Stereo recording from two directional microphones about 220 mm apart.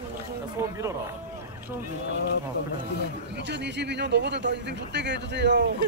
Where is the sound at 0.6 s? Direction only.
15° right (ahead or behind).